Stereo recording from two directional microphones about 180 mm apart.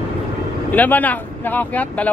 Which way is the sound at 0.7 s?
10° left (ahead or behind).